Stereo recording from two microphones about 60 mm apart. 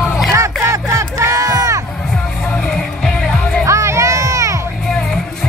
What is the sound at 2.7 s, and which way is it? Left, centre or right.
Music, centre.